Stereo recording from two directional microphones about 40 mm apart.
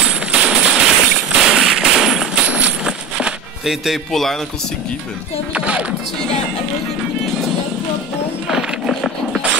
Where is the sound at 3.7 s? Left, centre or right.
Centre.